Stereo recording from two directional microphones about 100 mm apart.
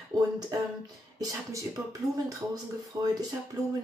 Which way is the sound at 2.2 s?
40° right (ahead or behind).